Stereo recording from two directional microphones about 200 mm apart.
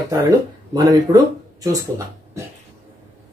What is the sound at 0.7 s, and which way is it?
Speech, 20° right (ahead or behind).